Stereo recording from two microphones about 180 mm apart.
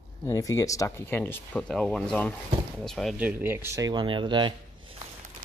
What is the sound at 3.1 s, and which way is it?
Speech, 10° right (ahead or behind).